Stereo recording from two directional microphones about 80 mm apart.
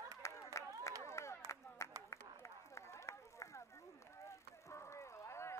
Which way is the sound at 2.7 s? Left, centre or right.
Left.